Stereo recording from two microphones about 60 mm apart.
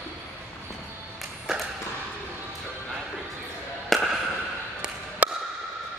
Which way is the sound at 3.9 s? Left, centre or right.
Centre.